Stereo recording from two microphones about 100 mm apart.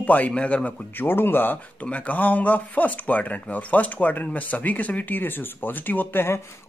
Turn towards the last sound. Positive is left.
turn(degrees=20)  # may be behind; listen again after turning